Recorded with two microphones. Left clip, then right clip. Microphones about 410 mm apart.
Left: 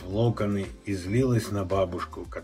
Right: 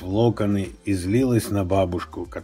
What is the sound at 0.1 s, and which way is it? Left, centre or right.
Speech, right.